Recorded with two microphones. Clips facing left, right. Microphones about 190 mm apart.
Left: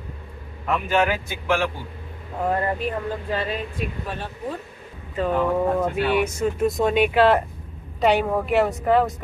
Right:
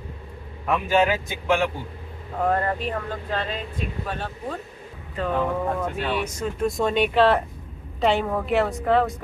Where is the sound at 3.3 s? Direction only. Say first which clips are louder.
Even; 10° left (ahead or behind).